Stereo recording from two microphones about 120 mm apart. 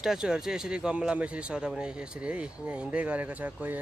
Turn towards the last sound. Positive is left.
turn(degrees=-15)  # may be behind; listen again after turning